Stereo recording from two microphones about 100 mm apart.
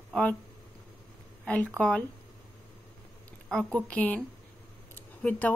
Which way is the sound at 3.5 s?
5° left (ahead or behind).